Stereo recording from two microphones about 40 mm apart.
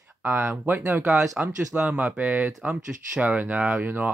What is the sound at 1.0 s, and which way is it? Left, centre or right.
Speech, centre.